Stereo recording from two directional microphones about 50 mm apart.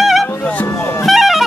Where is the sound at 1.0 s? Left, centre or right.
Centre.